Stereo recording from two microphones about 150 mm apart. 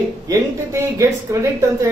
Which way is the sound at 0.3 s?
25° right (ahead or behind).